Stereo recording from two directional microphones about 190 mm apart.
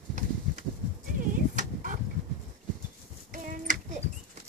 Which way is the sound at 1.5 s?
45° right (ahead or behind).